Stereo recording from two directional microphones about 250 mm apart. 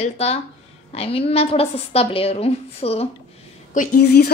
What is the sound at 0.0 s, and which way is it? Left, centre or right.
Speech, left.